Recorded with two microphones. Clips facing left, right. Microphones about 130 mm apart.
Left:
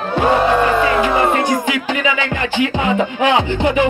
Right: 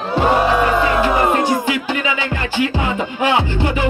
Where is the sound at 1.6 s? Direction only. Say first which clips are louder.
Left 1 dB; 15° left (ahead or behind).